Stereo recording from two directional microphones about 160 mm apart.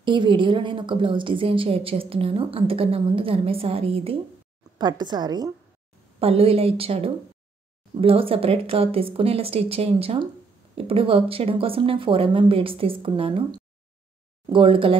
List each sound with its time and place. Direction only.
0.0 s a woman's voice: 30° right (ahead or behind)
6.1 s a woman's voice: 35° right (ahead or behind)
14.5 s a woman's voice: 35° right (ahead or behind)